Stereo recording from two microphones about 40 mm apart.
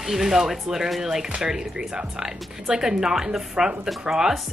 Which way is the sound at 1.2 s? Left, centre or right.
Right.